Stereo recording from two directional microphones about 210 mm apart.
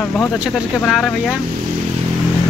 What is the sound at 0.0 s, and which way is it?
Speech, 5° left (ahead or behind).